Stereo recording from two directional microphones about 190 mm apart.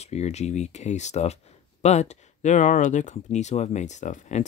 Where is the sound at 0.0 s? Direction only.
35° left (ahead or behind).